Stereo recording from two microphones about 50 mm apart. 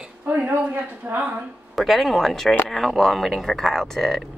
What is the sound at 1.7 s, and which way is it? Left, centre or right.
Speech, centre.